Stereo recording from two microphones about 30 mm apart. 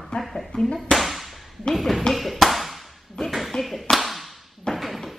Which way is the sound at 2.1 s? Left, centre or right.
Centre.